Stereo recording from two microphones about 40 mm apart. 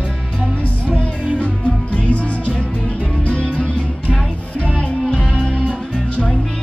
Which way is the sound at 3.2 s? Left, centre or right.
Left.